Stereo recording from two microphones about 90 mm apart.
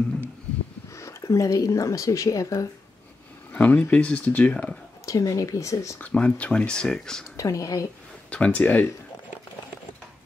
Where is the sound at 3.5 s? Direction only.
15° left (ahead or behind).